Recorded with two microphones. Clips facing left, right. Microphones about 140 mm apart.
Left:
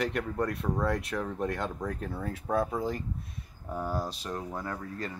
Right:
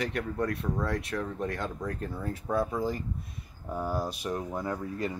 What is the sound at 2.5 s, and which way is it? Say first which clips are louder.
Speech: even; 30° left (ahead or behind).